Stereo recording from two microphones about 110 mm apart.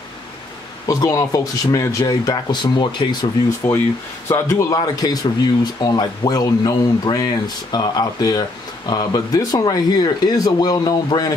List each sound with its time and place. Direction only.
0.8 s speech: 30° left (ahead or behind)
4.3 s speech: 30° left (ahead or behind)